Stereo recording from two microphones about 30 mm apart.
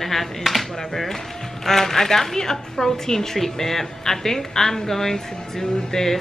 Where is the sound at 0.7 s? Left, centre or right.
Centre.